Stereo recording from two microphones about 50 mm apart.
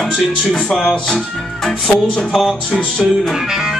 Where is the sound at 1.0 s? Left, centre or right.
Centre.